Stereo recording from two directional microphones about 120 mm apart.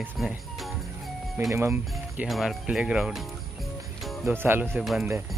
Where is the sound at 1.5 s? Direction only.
20° right (ahead or behind).